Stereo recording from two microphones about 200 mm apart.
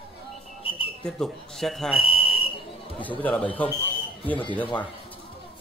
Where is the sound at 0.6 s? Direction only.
25° left (ahead or behind).